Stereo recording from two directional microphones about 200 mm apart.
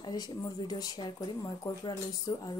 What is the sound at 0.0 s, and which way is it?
Speech, 20° left (ahead or behind).